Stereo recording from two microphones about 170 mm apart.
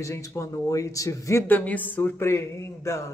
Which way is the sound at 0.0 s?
20° left (ahead or behind).